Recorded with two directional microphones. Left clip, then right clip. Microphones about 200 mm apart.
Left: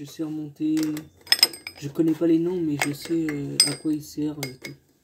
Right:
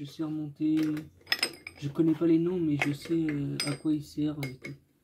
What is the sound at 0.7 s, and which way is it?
Cutlery, 10° right (ahead or behind).